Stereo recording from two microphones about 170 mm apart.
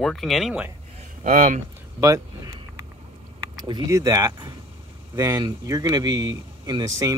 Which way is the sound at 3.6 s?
20° right (ahead or behind).